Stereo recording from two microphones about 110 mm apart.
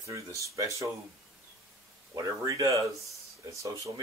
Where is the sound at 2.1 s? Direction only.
35° right (ahead or behind).